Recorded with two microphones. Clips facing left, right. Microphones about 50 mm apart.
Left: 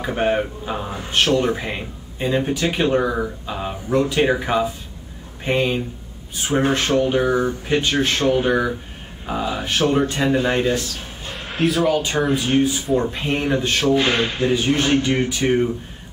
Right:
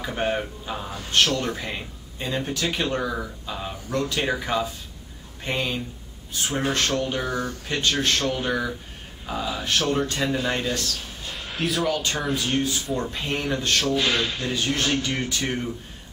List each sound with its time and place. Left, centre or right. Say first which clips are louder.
0.0 s speech: left 6 dB; centre
11.5 s speech: left 7 dB; centre
12.3 s speech: left 6 dB; centre